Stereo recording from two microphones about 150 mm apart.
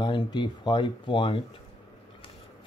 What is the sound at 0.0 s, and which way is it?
Speech, 30° left (ahead or behind).